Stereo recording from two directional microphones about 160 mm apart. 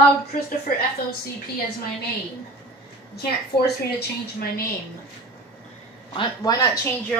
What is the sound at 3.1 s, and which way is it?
Speech, 90° left.